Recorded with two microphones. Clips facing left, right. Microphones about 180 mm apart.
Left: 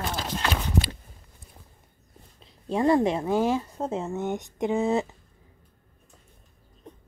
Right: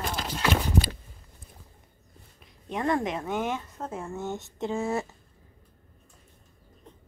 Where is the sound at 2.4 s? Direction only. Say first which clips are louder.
Left 6 dB; 30° left (ahead or behind).